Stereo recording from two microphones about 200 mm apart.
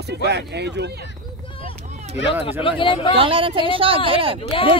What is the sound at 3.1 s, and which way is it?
Speech, 25° right (ahead or behind).